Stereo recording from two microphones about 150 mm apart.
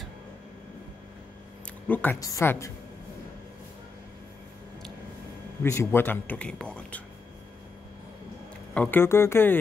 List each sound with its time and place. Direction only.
1.9 s a woman's voice: 10° left (ahead or behind)
5.6 s speech: 20° left (ahead or behind)
8.7 s speech: 10° left (ahead or behind)